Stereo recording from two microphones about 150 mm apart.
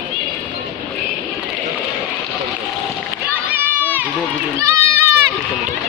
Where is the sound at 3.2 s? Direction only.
10° right (ahead or behind).